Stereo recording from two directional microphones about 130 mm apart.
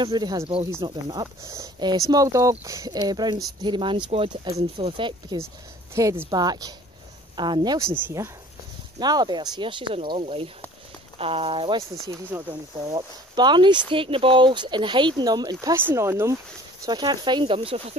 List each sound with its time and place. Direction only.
0.0 s speech: 35° right (ahead or behind)
5.9 s speech: 25° right (ahead or behind); by 11.8 s 40° right (ahead or behind)
12.3 s speech: 15° right (ahead or behind)
13.3 s speech: 35° right (ahead or behind)
15.7 s speech: 20° right (ahead or behind)
16.8 s speech: 30° right (ahead or behind)